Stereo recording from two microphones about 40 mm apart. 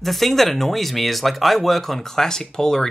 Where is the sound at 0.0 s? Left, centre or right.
Centre.